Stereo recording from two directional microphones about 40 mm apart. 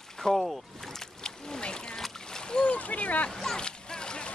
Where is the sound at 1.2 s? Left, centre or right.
Centre.